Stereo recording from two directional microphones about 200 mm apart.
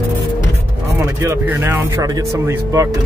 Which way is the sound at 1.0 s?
10° right (ahead or behind).